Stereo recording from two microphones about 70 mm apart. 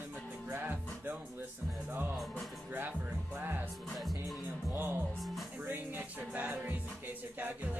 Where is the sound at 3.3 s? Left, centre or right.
Right.